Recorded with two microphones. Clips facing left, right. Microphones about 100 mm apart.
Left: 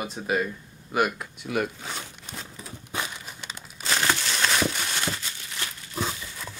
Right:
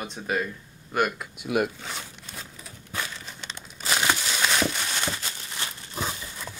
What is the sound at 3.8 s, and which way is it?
Crumpling, 10° right (ahead or behind).